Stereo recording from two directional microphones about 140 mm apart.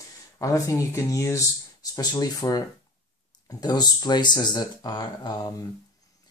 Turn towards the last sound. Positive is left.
turn(degrees=30)  # may be behind; listen again after turning